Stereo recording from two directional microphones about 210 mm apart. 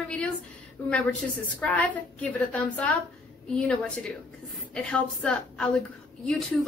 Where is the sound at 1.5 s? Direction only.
5° left (ahead or behind).